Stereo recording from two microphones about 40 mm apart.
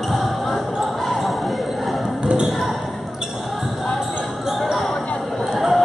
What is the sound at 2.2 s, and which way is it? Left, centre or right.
Basketball bounce, right.